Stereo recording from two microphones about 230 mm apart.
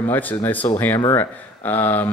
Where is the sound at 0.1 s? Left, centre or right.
Centre.